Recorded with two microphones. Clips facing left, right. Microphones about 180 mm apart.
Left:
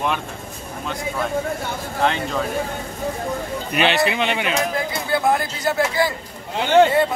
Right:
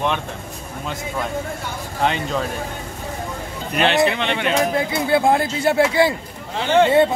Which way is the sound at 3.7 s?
Centre (ahead or behind).